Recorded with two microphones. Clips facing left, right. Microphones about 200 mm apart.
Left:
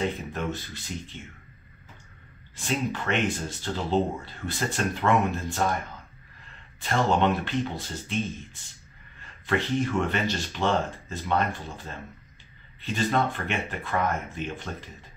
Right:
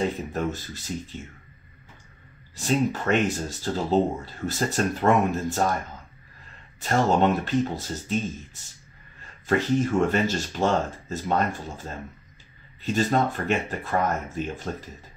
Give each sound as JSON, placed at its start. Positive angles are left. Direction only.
{"t": 0.3, "sound": "speech", "side_deg": -40}
{"t": 2.5, "sound": "speech", "side_deg": -40}
{"t": 6.8, "sound": "speech", "side_deg": -40}
{"t": 9.2, "sound": "speech", "side_deg": -40}